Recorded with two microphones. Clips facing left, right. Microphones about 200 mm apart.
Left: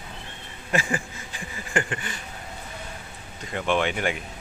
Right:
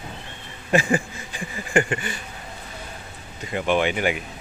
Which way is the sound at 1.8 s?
10° right (ahead or behind).